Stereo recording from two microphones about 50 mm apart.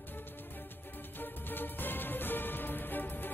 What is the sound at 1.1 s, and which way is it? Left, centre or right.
Music, left.